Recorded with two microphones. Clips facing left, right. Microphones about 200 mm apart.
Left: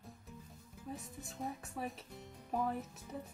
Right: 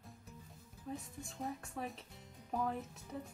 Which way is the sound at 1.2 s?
5° left (ahead or behind).